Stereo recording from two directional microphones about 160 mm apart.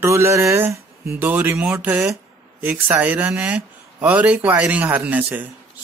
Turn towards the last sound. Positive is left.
turn(degrees=-10)  # may be behind; listen again after turning